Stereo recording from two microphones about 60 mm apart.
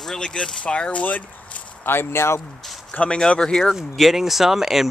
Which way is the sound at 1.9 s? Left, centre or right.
Left.